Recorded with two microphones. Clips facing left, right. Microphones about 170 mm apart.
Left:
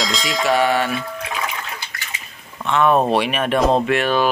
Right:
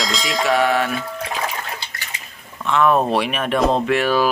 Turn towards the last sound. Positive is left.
turn(degrees=-5)  # may be behind; listen again after turning